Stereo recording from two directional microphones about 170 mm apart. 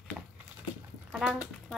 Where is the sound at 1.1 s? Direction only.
5° right (ahead or behind).